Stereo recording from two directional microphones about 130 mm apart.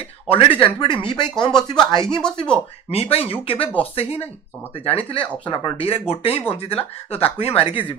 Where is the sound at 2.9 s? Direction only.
50° left (ahead or behind).